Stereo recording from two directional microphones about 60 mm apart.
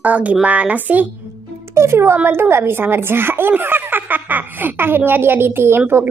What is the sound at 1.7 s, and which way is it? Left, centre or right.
A woman's voice, right.